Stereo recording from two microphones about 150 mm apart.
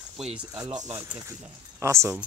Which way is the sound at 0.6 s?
20° right (ahead or behind).